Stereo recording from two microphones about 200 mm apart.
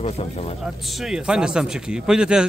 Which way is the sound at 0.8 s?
Centre (ahead or behind).